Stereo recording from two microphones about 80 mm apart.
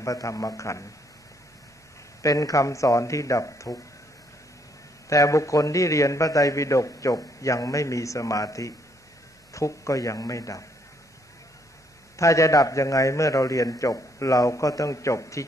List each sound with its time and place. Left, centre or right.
0.0 s a man's voice: left
2.2 s a man's voice: left
5.1 s a man's voice: left
12.2 s a man's voice: left